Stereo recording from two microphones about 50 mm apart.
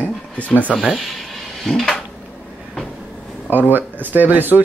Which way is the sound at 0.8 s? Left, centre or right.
Centre.